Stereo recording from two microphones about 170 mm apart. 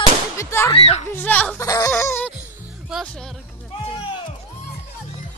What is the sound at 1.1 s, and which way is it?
Music, 10° left (ahead or behind).